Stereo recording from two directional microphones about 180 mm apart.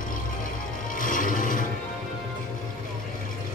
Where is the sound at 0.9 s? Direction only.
50° left (ahead or behind).